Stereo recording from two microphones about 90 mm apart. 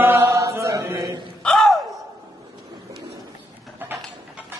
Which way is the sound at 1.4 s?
Centre (ahead or behind).